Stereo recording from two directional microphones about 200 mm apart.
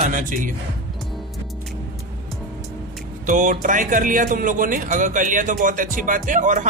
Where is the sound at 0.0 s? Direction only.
40° right (ahead or behind).